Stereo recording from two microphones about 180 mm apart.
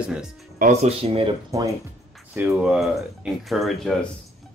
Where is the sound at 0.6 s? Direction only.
40° right (ahead or behind).